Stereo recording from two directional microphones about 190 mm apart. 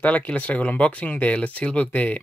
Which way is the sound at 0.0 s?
5° left (ahead or behind).